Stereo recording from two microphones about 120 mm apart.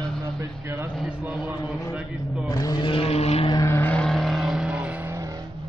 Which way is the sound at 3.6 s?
20° left (ahead or behind).